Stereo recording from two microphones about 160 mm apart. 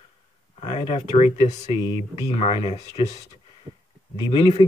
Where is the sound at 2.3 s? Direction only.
35° left (ahead or behind).